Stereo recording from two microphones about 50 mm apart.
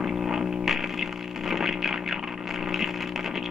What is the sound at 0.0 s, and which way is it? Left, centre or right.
Music, centre.